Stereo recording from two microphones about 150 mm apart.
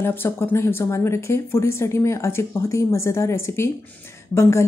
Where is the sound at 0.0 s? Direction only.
15° left (ahead or behind).